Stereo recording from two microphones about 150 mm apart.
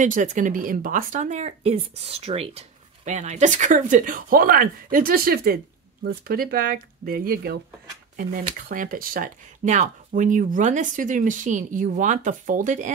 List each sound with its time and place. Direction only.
0.0 s speech: 55° right (ahead or behind); by 7.5 s 80° right
8.2 s speech: 70° right (ahead or behind)